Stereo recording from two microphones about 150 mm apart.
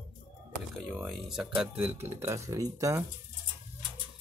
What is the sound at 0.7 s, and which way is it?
Speech, centre (ahead or behind).